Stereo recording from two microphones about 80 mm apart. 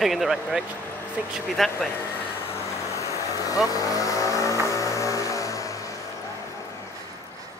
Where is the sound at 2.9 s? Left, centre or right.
Left.